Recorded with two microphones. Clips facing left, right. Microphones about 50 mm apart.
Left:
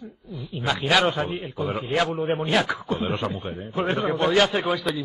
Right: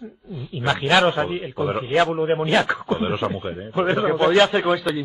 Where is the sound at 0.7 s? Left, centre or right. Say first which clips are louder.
Right 3 dB; centre.